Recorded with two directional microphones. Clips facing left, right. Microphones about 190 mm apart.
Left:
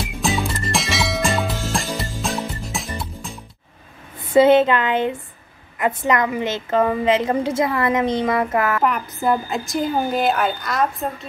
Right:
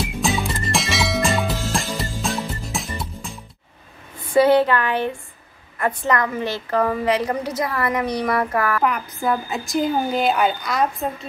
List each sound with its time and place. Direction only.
0.0 s music: centre (ahead or behind)
4.3 s a woman's voice: 20° left (ahead or behind)
8.8 s a woman's voice: centre (ahead or behind)